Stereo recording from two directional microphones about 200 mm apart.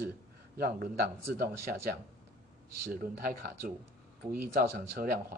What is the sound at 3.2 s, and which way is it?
Speech, 50° right (ahead or behind).